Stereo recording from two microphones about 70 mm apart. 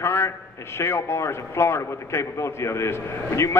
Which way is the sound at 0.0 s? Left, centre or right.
Left.